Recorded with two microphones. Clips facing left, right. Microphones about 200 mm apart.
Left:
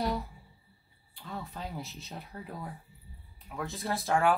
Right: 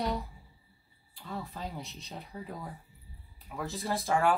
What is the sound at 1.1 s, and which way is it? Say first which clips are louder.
Speech: right 1 dB; centre (ahead or behind).